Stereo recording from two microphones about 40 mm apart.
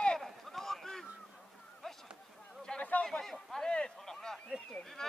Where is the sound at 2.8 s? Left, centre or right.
Left.